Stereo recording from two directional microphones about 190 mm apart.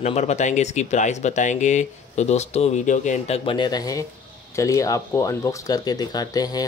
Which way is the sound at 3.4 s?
25° left (ahead or behind).